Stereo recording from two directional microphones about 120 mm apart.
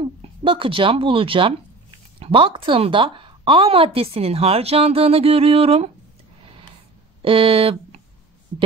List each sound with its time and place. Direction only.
0.0 s speech: 45° right (ahead or behind)
7.2 s speech: 50° right (ahead or behind)